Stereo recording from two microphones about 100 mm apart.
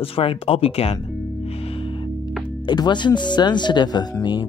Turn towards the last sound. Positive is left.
turn(degrees=45)  # may be behind; listen again after turning